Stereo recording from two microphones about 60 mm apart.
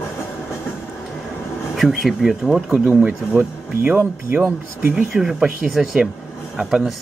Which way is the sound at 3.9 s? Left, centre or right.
Right.